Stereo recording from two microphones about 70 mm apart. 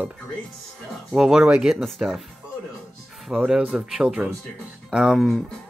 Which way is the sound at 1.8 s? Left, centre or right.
Centre.